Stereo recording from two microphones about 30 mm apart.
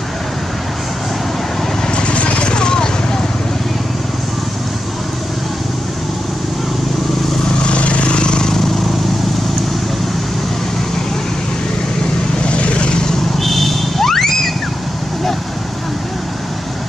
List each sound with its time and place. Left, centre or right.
2.0 s vehicle: left
7.7 s vehicle: left
12.4 s vehicle: left
13.4 s a sound: centre